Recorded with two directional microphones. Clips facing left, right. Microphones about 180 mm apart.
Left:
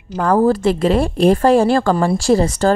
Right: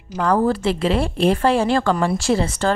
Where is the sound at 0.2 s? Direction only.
45° left (ahead or behind).